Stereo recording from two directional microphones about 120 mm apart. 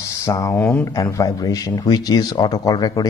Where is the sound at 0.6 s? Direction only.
10° left (ahead or behind).